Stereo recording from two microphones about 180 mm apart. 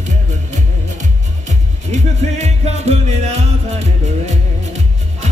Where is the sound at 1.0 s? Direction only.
40° right (ahead or behind).